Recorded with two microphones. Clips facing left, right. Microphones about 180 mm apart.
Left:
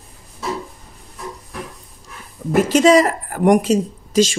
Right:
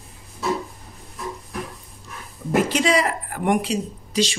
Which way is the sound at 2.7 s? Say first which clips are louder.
Left 8 dB; 40° left (ahead or behind).